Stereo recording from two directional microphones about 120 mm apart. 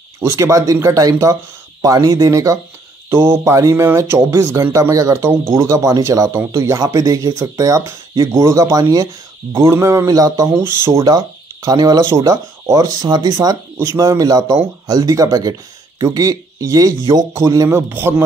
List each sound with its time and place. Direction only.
0.2 s speech: 20° right (ahead or behind)
10.9 s speech: 35° right (ahead or behind)